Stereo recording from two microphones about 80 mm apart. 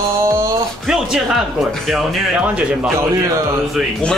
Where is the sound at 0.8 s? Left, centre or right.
Centre.